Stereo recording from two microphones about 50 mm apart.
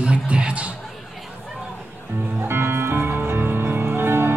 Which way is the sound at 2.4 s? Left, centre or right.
Right.